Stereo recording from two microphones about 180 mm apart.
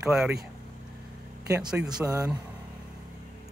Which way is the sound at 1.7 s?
20° right (ahead or behind).